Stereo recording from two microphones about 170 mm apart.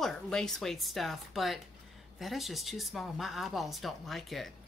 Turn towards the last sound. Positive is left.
turn(degrees=0)  # may be behind; listen again after turning